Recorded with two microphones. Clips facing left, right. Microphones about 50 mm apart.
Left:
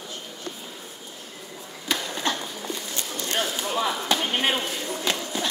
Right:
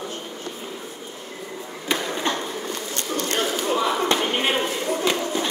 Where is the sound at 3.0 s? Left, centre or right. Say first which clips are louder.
Right 5 dB; right.